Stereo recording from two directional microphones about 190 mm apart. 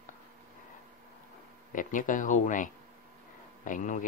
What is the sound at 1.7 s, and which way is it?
A man's voice, 45° left (ahead or behind).